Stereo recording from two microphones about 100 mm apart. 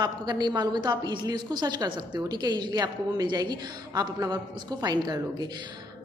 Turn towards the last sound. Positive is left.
turn(degrees=-45)  # may be behind; listen again after turning